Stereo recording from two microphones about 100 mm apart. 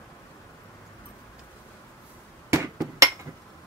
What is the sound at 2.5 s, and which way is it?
Hammer, 30° right (ahead or behind).